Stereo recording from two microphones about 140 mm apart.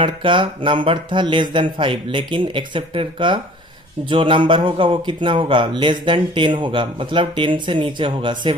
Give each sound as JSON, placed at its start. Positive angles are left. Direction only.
{"t": 0.0, "sound": "speech", "side_deg": -35}